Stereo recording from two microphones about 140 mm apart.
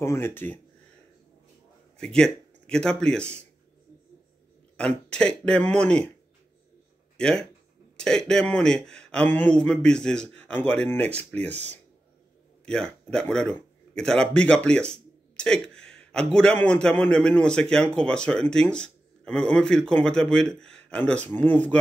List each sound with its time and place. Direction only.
0.0 s a man's voice: 20° left (ahead or behind)
2.0 s speech: 5° left (ahead or behind)
4.7 s a man's voice: 5° left (ahead or behind)
7.2 s a man's voice: 5° left (ahead or behind)
12.6 s a man's voice: 5° left (ahead or behind)